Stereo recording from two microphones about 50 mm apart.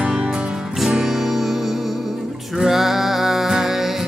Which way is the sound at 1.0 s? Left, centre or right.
Centre.